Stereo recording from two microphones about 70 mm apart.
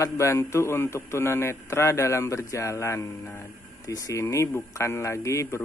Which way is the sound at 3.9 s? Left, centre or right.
Left.